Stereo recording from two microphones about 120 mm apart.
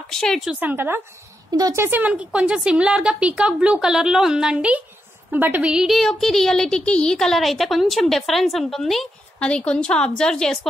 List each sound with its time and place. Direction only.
0.1 s a woman's voice: 5° left (ahead or behind)
0.5 s a woman's voice: 15° right (ahead or behind)
1.5 s a woman's voice: 30° right (ahead or behind); by 10.7 s 5° left (ahead or behind)